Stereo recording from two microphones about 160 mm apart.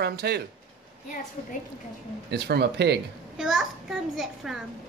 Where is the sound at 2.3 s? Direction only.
90° right.